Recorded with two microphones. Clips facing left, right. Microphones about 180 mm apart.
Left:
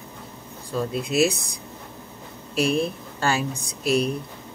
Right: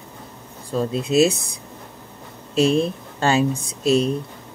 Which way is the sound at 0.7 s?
25° right (ahead or behind).